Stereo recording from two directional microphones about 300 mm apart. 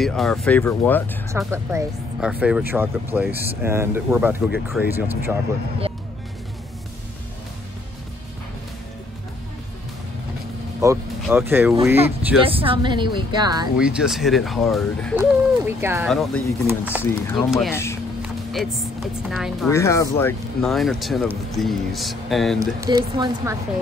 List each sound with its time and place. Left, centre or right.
0.0 s speech: centre
1.3 s speech: centre
10.8 s speech: centre
13.7 s speech: centre
18.2 s music: centre
19.3 s speech: centre
19.7 s speech: centre
22.8 s speech: centre